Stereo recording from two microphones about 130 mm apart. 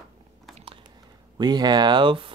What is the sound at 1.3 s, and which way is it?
Speech, 30° right (ahead or behind).